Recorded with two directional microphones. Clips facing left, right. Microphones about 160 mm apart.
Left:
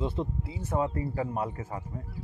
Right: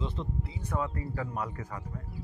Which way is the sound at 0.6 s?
25° left (ahead or behind).